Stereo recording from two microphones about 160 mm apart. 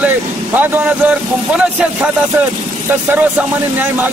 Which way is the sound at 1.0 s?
5° right (ahead or behind).